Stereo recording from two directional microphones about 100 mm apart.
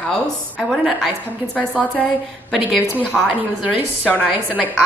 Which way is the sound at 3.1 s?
Centre (ahead or behind).